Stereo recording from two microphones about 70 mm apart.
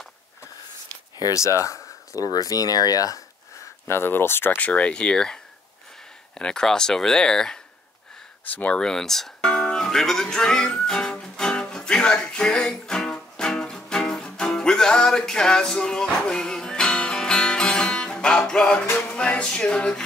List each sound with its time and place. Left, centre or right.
1.3 s speech: left
3.8 s speech: left
4.6 s speech: centre
8.5 s speech: left
8.7 s music: centre